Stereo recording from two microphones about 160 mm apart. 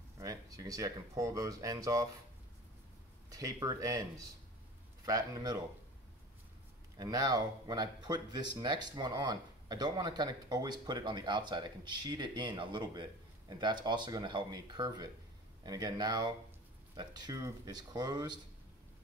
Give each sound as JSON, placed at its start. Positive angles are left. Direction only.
{"t": 0.2, "sound": "speech", "side_deg": -20}
{"t": 3.3, "sound": "speech", "side_deg": -20}
{"t": 5.0, "sound": "speech", "side_deg": -20}
{"t": 7.0, "sound": "speech", "side_deg": -25}